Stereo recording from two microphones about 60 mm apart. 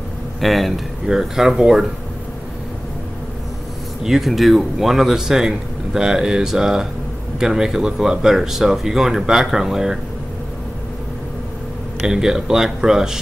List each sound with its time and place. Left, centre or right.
0.4 s speech: centre
4.0 s speech: centre
12.1 s speech: centre